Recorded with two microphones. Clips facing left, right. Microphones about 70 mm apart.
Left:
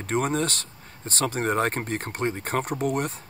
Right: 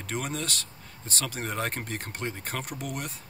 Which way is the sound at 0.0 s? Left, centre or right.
Left.